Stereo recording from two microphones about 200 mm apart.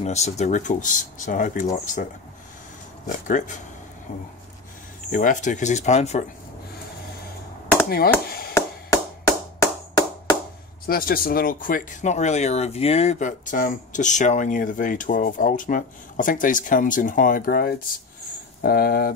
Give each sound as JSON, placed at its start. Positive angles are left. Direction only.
{"t": 0.0, "sound": "speech", "side_deg": 35}
{"t": 3.1, "sound": "speech", "side_deg": 40}
{"t": 5.1, "sound": "speech", "side_deg": 40}
{"t": 9.2, "sound": "music", "side_deg": 20}
{"t": 10.9, "sound": "speech", "side_deg": 45}